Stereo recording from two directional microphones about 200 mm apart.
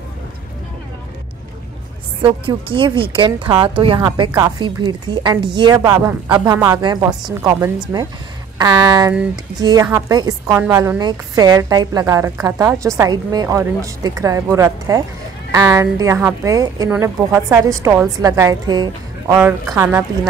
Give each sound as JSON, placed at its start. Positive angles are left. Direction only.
{"t": 2.2, "sound": "a woman's voice", "side_deg": -25}